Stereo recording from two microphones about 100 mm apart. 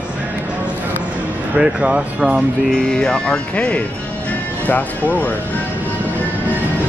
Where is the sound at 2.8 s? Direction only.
5° left (ahead or behind).